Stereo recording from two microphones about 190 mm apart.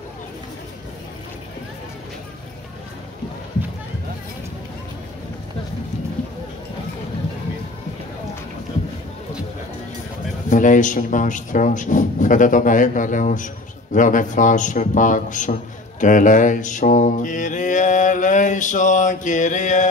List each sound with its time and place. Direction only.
10.5 s a man's voice: 40° left (ahead or behind)
16.0 s mantra: 40° left (ahead or behind)